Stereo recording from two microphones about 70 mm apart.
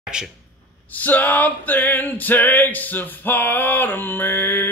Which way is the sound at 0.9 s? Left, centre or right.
Left.